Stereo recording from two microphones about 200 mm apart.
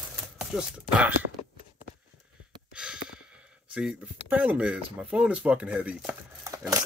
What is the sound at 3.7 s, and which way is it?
Speech, 5° right (ahead or behind).